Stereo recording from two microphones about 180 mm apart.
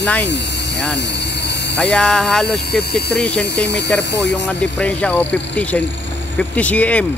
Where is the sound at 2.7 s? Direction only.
60° left (ahead or behind).